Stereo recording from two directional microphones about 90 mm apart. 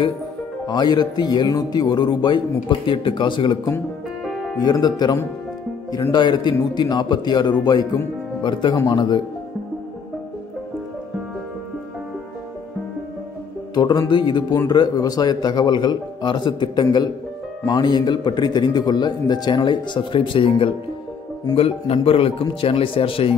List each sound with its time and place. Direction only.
0.7 s speech: 55° left (ahead or behind)
4.6 s speech: 50° left (ahead or behind)
14.0 s speech: 55° left (ahead or behind)
14.7 s speech: 45° left (ahead or behind); by 23.3 s 90° left